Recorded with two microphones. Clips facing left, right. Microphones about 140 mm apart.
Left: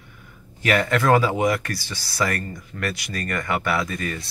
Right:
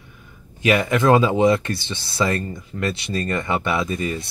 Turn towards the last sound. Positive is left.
turn(degrees=-20)  # may be behind; listen again after turning